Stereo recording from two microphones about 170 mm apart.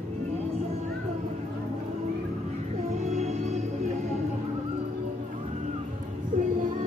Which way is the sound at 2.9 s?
40° right (ahead or behind).